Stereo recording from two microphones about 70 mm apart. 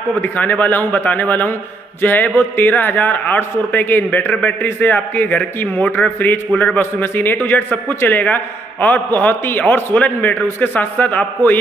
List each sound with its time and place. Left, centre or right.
0.1 s a man's voice: left